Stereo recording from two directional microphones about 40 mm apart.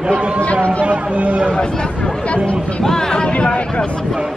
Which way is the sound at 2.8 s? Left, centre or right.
Centre.